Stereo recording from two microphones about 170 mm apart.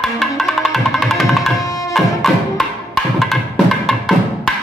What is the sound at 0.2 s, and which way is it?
Music, centre (ahead or behind).